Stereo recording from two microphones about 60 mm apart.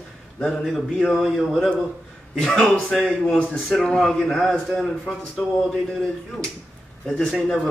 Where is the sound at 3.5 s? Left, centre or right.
Centre.